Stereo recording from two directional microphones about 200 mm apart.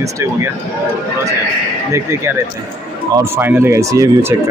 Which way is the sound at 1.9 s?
15° right (ahead or behind).